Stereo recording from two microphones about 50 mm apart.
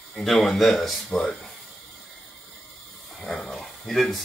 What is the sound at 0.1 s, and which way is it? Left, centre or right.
Speech, centre.